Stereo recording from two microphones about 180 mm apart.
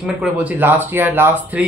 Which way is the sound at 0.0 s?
5° right (ahead or behind).